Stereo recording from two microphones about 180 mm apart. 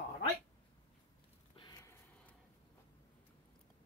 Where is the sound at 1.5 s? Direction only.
25° left (ahead or behind).